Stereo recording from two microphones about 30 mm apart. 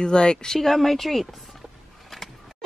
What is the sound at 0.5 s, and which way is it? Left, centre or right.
Speech, centre.